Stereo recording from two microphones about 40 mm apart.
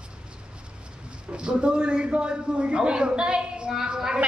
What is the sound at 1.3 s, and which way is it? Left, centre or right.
Speech, right.